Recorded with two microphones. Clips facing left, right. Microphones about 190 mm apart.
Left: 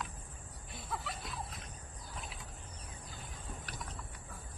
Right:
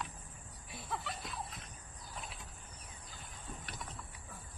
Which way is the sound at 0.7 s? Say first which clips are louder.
Even; centre (ahead or behind).